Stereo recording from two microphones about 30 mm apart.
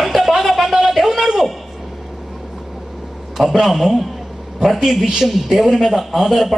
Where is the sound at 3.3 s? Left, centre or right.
Centre.